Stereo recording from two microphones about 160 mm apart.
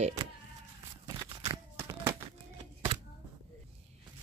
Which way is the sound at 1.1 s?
25° right (ahead or behind).